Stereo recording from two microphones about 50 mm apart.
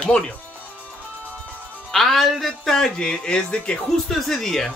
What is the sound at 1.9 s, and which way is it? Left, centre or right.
Speech, centre.